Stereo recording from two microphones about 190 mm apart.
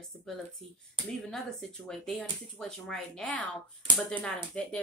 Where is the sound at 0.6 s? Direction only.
30° right (ahead or behind).